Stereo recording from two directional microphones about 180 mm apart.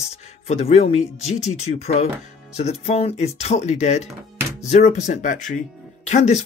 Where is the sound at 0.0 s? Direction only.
35° left (ahead or behind).